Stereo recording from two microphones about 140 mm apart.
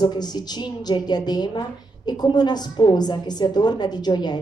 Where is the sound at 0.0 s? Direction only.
30° left (ahead or behind).